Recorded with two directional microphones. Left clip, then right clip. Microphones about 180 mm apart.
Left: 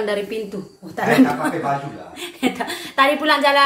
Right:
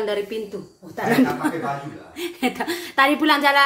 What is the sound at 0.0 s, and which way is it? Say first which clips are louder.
Speech: left 2 dB; 20° right (ahead or behind).